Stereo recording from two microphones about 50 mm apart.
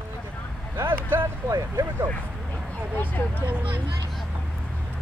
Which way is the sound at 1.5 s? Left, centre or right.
Right.